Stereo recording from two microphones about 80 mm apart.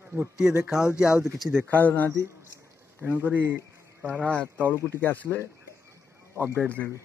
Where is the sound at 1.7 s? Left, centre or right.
Left.